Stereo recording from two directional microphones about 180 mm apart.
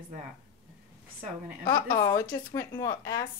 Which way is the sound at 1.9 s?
15° left (ahead or behind).